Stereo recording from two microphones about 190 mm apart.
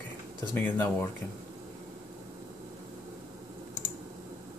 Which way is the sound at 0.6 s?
15° left (ahead or behind).